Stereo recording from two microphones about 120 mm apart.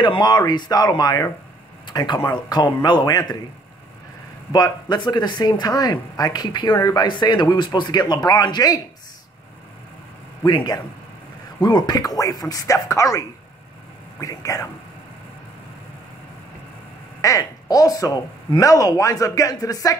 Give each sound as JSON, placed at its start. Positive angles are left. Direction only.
{"t": 0.0, "sound": "speech", "side_deg": 35}
{"t": 4.5, "sound": "speech", "side_deg": 35}
{"t": 10.4, "sound": "speech", "side_deg": 35}
{"t": 14.2, "sound": "speech", "side_deg": 30}
{"t": 17.2, "sound": "speech", "side_deg": 30}